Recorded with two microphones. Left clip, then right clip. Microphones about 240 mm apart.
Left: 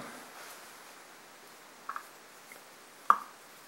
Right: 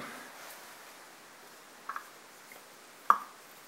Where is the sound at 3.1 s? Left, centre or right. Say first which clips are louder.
Even; centre.